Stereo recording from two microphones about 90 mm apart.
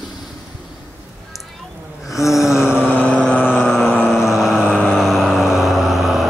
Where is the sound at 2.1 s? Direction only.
5° right (ahead or behind).